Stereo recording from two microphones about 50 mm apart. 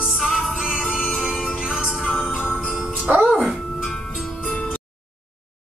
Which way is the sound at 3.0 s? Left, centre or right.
Right.